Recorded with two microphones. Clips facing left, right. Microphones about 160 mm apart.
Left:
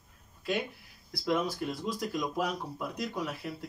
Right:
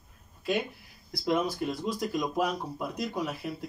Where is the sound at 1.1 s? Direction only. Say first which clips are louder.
Right 2 dB; 20° right (ahead or behind).